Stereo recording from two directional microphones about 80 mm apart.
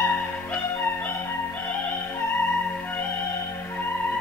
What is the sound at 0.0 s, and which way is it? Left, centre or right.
Music, left.